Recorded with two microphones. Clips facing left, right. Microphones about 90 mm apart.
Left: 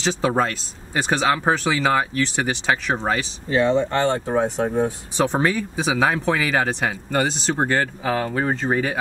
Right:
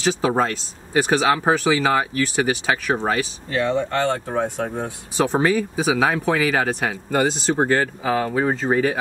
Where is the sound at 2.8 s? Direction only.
5° right (ahead or behind).